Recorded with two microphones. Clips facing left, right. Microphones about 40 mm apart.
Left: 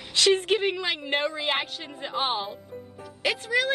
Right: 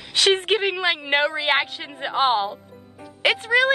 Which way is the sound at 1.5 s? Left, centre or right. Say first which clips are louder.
Right 7 dB; right.